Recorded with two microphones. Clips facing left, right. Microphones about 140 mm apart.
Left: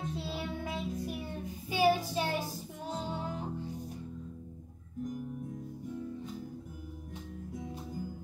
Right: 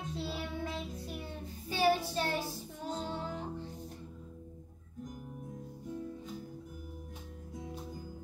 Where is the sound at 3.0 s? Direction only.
10° left (ahead or behind).